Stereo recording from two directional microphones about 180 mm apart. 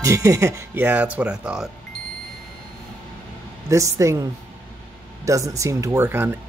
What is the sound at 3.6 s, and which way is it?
Speech, 15° right (ahead or behind).